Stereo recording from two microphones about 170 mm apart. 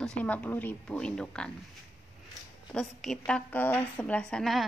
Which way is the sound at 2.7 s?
Centre (ahead or behind).